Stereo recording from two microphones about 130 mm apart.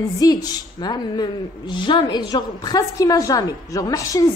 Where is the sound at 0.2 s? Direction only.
30° left (ahead or behind).